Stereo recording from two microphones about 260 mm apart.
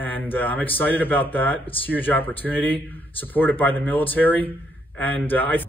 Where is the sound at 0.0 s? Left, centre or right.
Centre.